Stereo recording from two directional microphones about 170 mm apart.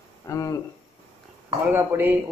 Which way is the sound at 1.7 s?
10° right (ahead or behind).